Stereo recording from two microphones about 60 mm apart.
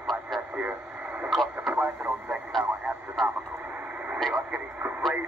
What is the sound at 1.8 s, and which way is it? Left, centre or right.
Radio, right.